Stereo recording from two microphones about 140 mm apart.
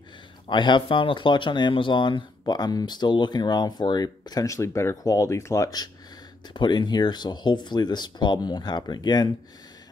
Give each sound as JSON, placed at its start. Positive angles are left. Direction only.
{"t": 0.5, "sound": "speech", "side_deg": 35}